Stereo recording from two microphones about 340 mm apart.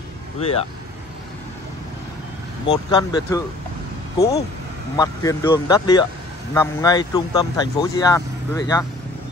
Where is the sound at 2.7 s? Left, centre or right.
Centre.